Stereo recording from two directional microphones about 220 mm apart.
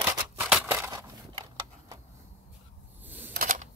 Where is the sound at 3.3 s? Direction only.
40° right (ahead or behind).